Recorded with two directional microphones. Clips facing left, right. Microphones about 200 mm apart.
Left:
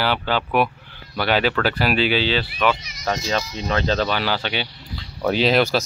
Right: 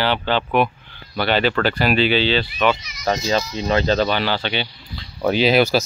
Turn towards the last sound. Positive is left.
turn(degrees=-5)  # may be behind; listen again after turning